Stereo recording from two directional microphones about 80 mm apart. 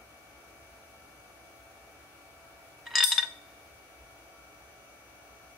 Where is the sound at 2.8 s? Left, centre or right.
Centre.